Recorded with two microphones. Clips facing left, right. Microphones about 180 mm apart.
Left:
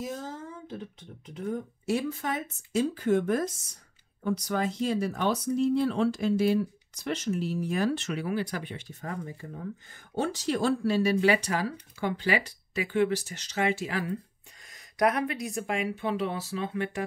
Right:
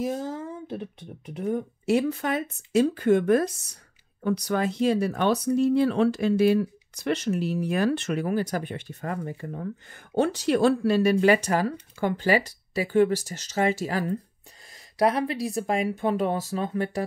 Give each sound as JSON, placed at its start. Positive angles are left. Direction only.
{"t": 0.7, "sound": "speech", "side_deg": -65}
{"t": 14.7, "sound": "speech", "side_deg": -30}